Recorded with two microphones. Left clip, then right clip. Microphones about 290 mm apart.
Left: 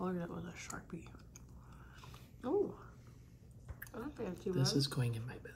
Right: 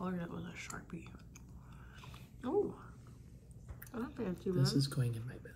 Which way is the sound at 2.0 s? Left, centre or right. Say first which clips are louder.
Even; centre.